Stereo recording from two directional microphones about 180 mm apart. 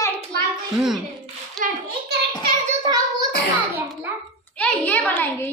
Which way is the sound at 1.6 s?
Centre (ahead or behind).